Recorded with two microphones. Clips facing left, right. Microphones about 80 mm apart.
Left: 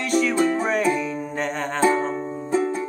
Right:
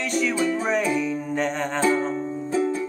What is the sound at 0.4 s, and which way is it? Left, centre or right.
Music, left.